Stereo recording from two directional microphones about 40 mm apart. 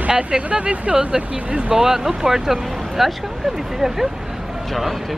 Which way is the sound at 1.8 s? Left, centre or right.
Centre.